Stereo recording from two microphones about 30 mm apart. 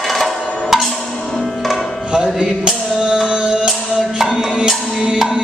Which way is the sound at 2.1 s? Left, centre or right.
Right.